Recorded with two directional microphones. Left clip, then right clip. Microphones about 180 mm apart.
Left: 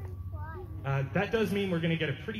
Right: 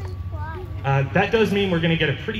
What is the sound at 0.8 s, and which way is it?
A man's voice, 55° left (ahead or behind).